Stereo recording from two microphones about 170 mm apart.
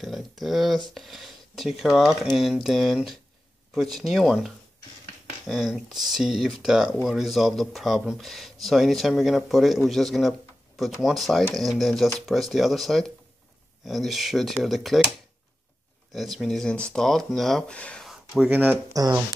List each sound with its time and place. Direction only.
0.0 s speech: centre (ahead or behind)
5.5 s speech: centre (ahead or behind)
18.9 s speech: 20° right (ahead or behind)